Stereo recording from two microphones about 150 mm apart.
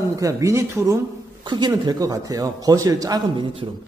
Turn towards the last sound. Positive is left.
turn(degrees=-30)  # may be behind; listen again after turning